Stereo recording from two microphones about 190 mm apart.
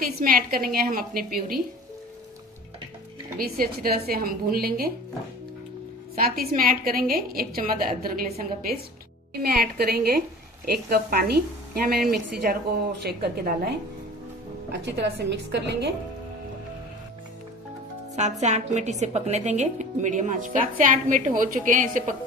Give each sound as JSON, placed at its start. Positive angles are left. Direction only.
{"t": 0.0, "sound": "a woman's voice", "side_deg": -50}
{"t": 3.3, "sound": "a woman's voice", "side_deg": -50}
{"t": 6.1, "sound": "a woman's voice", "side_deg": -50}
{"t": 14.7, "sound": "a woman's voice", "side_deg": -65}
{"t": 18.1, "sound": "a woman's voice", "side_deg": -35}